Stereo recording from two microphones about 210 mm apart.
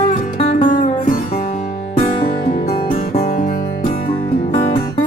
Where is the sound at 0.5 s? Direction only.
40° left (ahead or behind).